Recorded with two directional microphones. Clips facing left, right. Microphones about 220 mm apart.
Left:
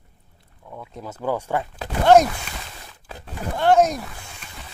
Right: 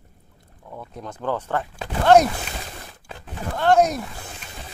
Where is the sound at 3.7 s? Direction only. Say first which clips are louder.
Left 1 dB; centre (ahead or behind).